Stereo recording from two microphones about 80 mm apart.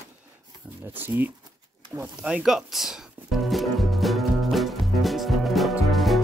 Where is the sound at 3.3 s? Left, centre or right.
Centre.